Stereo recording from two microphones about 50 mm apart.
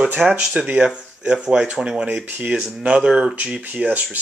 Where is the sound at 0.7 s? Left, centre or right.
Right.